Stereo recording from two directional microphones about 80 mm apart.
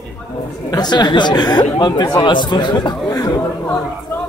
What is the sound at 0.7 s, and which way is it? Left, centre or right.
Speech, left.